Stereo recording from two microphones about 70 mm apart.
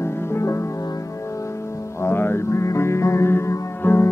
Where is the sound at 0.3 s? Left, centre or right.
Left.